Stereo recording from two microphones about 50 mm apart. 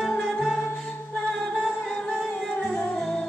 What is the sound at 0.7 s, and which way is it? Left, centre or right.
Music, centre.